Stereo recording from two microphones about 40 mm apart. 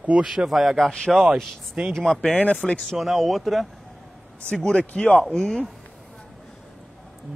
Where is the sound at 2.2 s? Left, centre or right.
Left.